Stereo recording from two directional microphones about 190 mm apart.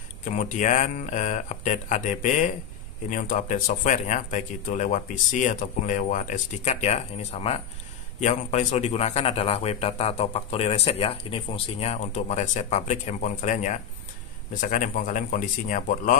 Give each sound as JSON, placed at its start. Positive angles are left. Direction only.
{"t": 0.2, "sound": "a man's voice", "side_deg": 40}